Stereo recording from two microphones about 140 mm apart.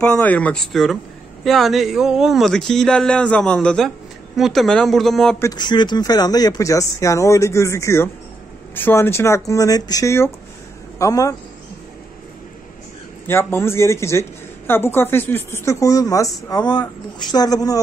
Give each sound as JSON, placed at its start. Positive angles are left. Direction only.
{"t": 0.0, "sound": "speech", "side_deg": 10}
{"t": 5.4, "sound": "speech", "side_deg": 30}
{"t": 13.3, "sound": "a woman's voice", "side_deg": 15}